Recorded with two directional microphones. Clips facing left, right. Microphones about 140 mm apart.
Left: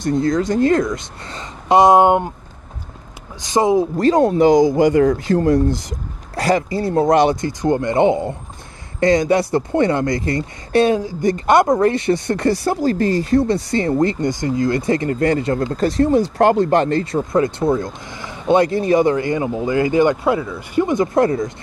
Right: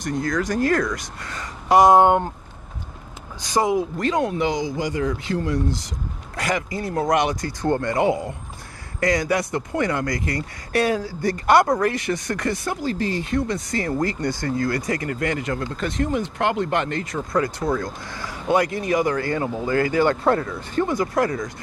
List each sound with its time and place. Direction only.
0.0 s speech: 25° left (ahead or behind)
3.3 s speech: 20° left (ahead or behind)
3.7 s speech: 35° left (ahead or behind); by 5.9 s 50° left (ahead or behind)
6.3 s speech: 30° left (ahead or behind)
12.9 s speech: 45° left (ahead or behind); by 21.5 s 25° left (ahead or behind)